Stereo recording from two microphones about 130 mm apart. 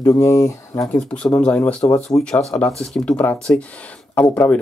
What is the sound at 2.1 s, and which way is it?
Speech, 20° left (ahead or behind).